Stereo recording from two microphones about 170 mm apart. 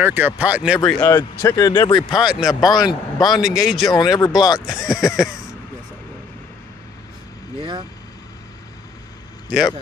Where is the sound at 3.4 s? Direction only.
Centre (ahead or behind).